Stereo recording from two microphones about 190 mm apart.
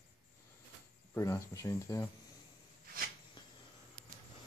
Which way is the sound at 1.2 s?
15° left (ahead or behind).